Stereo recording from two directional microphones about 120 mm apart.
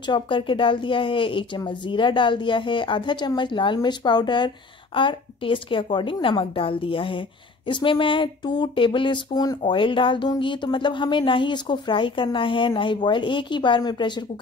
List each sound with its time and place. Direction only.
0.0 s a woman's voice: 40° left (ahead or behind)
9.7 s speech: 45° left (ahead or behind)